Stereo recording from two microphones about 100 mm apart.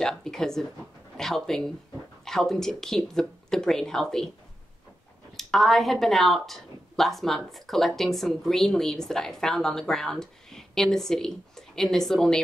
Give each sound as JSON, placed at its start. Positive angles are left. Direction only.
{"t": 0.0, "sound": "speech", "side_deg": 5}
{"t": 5.4, "sound": "speech", "side_deg": 0}